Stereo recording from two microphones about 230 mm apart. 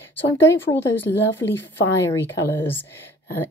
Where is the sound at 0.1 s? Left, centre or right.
Centre.